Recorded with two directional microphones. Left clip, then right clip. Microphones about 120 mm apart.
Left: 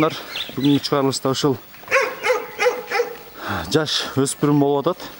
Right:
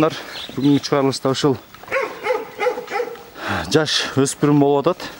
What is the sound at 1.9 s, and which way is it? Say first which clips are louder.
Dog: left 3 dB; 25° left (ahead or behind).